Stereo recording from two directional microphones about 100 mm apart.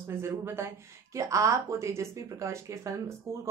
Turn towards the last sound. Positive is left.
turn(degrees=-30)  # may be behind; listen again after turning